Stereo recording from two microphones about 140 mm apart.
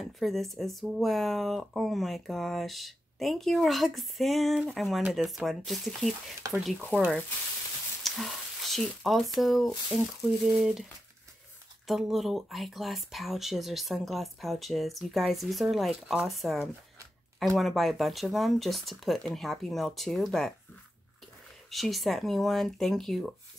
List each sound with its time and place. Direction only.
0.0 s speech: centre (ahead or behind)
8.0 s speech: centre (ahead or behind)
11.9 s speech: centre (ahead or behind)
21.6 s speech: centre (ahead or behind)